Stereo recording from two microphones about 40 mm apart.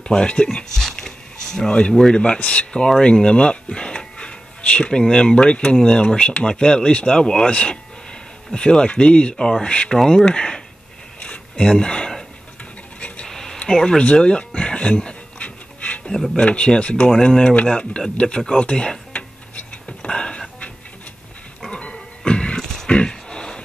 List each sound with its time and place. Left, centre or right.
0.1 s speech: left
0.9 s a sound: centre
1.7 s speech: left
9.9 s speech: centre
10.3 s speech: left
11.5 s a sound: centre
13.3 s a sound: centre
13.7 s speech: centre
14.0 s pant: left
16.3 s speech: left
19.9 s music: left
21.6 s dog: left
22.8 s a sound: left